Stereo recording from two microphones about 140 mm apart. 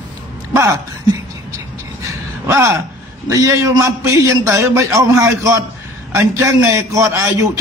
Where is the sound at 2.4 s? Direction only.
20° right (ahead or behind).